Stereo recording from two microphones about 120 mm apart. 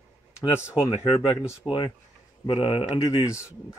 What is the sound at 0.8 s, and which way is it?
Speech, 40° left (ahead or behind).